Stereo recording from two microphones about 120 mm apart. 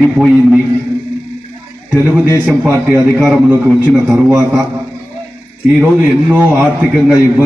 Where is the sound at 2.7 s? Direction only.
20° right (ahead or behind).